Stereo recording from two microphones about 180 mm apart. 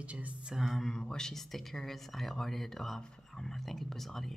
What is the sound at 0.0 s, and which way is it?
Speech, 5° right (ahead or behind).